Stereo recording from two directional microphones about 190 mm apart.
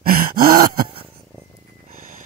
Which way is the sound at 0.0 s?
50° right (ahead or behind).